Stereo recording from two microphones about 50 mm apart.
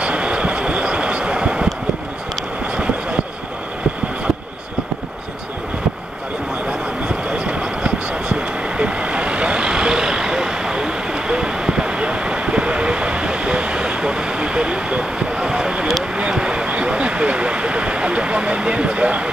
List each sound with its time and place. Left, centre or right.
0.0 s a sound: right
2.7 s vehicle: right
7.1 s vehicle: right